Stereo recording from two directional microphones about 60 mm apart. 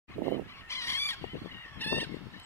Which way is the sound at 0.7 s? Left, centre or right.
Left.